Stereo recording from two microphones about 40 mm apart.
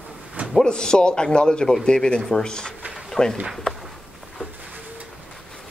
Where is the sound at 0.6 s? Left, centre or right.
Centre.